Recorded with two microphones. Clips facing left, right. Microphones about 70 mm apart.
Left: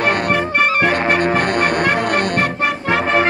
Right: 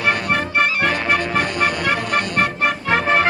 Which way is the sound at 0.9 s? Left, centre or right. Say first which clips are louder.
Left 4 dB; left.